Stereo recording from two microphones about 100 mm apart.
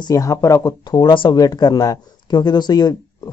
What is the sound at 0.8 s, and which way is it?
Speech, 45° left (ahead or behind).